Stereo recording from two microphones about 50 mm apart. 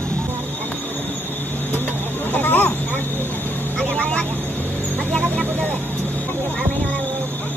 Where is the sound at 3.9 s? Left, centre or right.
Left.